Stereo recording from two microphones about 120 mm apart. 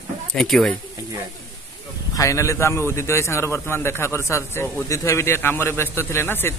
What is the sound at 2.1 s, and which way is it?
A man's voice, 25° left (ahead or behind).